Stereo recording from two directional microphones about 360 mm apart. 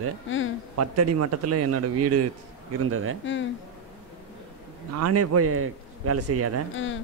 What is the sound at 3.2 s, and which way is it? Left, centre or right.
Speech, left.